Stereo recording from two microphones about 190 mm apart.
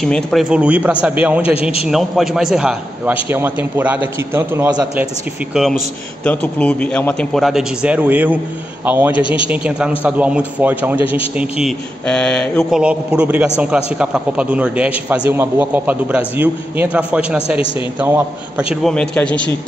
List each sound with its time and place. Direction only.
0.0 s a man's voice: centre (ahead or behind)
1.4 s a man's voice: 30° left (ahead or behind)
1.9 s a man's voice: centre (ahead or behind)
11.0 s a man's voice: 25° left (ahead or behind)
11.3 s a man's voice: 5° right (ahead or behind)
18.8 s speech: 5° left (ahead or behind)